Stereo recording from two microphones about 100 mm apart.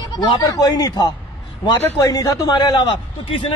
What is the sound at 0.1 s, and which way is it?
A woman's voice, 45° left (ahead or behind).